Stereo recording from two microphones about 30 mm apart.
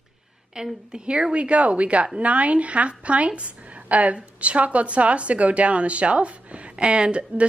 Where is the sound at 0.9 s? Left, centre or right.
Right.